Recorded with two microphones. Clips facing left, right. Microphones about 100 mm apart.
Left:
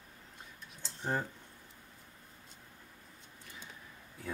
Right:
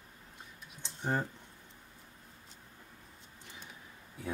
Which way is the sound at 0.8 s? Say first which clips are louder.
Right 2 dB; 15° right (ahead or behind).